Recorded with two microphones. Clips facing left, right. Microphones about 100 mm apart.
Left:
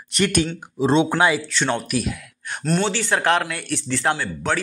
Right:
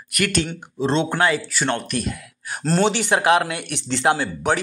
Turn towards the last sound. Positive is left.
turn(degrees=-20)  # may be behind; listen again after turning